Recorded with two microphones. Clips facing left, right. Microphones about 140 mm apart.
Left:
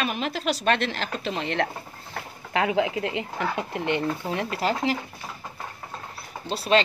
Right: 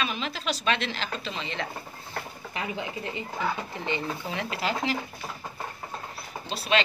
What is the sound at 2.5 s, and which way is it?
Speech, 90° left.